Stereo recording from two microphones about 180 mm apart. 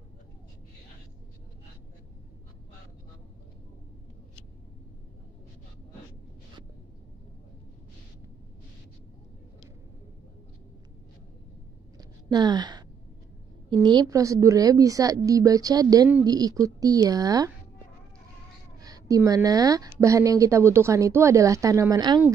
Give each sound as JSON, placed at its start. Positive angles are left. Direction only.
{"t": 12.0, "sound": "a sound", "side_deg": -25}
{"t": 13.8, "sound": "speech", "side_deg": -20}
{"t": 18.8, "sound": "speech", "side_deg": -20}